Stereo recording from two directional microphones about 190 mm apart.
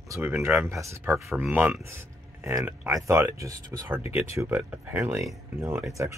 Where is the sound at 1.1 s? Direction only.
Centre (ahead or behind).